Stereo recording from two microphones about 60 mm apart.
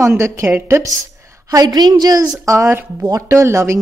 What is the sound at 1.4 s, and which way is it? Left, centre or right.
A woman's voice, right.